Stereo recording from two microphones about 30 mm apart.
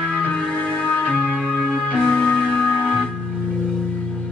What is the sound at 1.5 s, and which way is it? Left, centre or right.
Music, left.